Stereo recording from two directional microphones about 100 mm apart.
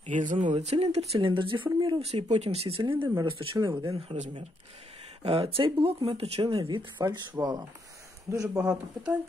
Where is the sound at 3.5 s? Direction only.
45° right (ahead or behind).